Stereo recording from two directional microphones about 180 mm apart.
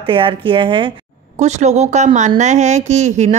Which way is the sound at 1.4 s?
40° right (ahead or behind).